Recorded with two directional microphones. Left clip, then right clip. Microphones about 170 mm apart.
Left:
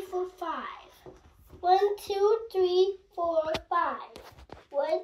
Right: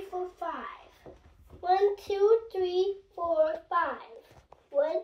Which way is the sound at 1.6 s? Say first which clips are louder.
Left 2 dB; 10° right (ahead or behind).